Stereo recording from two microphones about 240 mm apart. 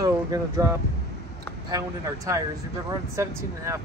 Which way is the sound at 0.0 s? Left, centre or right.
Centre.